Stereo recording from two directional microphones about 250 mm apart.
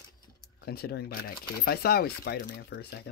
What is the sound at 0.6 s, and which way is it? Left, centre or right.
Speech, left.